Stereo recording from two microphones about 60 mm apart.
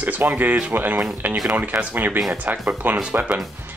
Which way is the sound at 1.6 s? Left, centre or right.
Right.